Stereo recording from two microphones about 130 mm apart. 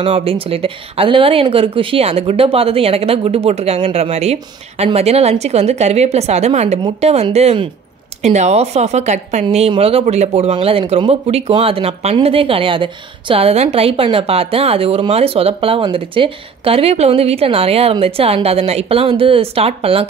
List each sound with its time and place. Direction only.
0.0 s a woman's voice: 45° right (ahead or behind)
10.5 s speech: 45° right (ahead or behind)